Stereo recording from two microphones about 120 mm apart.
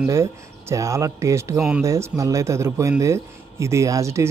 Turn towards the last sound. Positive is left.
turn(degrees=-25)  # may be behind; listen again after turning